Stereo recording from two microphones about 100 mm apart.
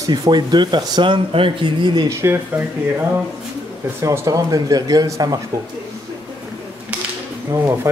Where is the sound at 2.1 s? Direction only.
25° right (ahead or behind).